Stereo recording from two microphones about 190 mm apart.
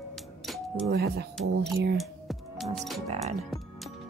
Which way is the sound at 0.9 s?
60° right (ahead or behind).